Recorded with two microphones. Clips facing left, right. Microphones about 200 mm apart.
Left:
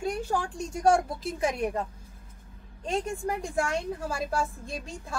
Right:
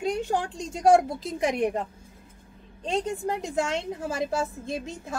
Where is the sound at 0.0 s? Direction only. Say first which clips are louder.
Right 3 dB; 20° right (ahead or behind).